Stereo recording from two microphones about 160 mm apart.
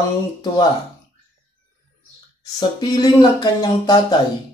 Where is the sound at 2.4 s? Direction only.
25° left (ahead or behind).